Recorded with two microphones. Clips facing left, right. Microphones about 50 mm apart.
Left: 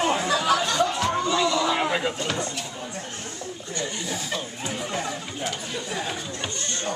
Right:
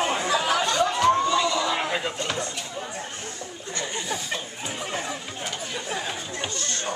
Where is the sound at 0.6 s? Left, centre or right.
Centre.